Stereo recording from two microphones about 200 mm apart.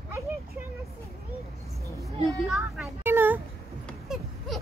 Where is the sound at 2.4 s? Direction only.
Centre (ahead or behind).